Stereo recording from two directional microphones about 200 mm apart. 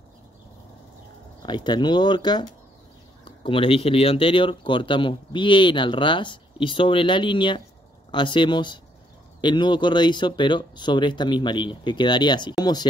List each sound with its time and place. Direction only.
1.4 s speech: 20° left (ahead or behind)